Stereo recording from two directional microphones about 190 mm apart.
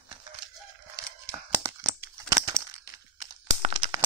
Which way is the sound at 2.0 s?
20° right (ahead or behind).